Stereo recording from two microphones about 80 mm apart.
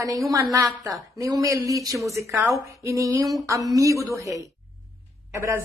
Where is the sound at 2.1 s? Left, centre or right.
Right.